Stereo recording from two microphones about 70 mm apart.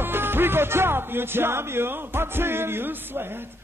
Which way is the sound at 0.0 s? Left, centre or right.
Right.